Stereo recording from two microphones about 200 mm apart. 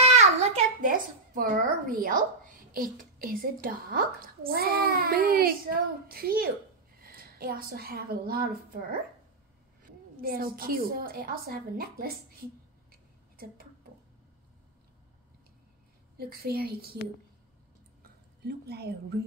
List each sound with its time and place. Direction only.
0.0 s a sound: 35° right (ahead or behind)
0.7 s a woman's voice: 40° right (ahead or behind)
10.2 s a woman's voice: 45° right (ahead or behind)
12.9 s a sound: 50° right (ahead or behind)
16.2 s a woman's voice: 50° right (ahead or behind)
18.4 s a woman's voice: 55° right (ahead or behind)